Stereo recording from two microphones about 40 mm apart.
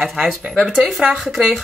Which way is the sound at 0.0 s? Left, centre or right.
Centre.